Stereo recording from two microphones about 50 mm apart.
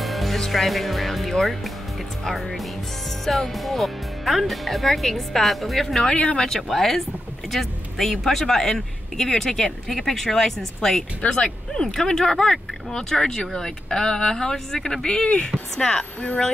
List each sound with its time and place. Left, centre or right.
0.0 s music: centre
0.4 s speech: centre
6.1 s speech: centre